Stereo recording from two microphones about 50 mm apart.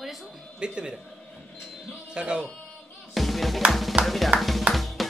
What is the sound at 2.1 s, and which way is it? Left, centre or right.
Speech, centre.